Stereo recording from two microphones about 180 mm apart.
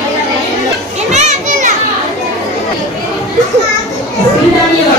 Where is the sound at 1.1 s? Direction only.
40° right (ahead or behind).